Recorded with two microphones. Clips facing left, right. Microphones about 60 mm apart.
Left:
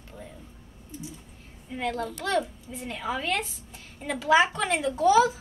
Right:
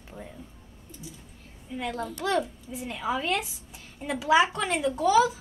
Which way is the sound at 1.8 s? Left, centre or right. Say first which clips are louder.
Left 1 dB; centre.